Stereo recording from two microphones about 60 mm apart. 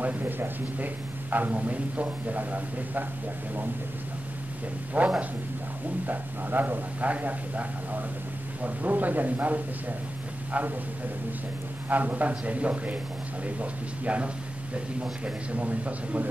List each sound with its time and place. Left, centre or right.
0.0 s a man's voice: right
5.0 s a man's voice: right
11.9 s a man's voice: right